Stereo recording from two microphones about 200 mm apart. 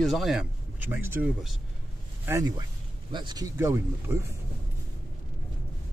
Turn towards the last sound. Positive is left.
turn(degrees=-15)  # may be behind; listen again after turning